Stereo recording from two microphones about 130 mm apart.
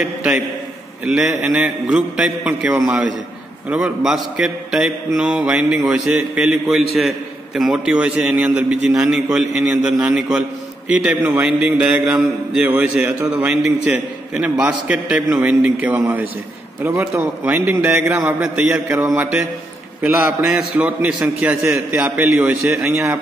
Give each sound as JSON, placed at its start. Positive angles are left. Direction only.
{"t": 0.0, "sound": "a man's voice", "side_deg": -5}